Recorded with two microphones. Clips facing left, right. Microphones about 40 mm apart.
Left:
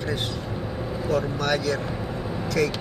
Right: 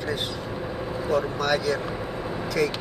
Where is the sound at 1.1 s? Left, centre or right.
Centre.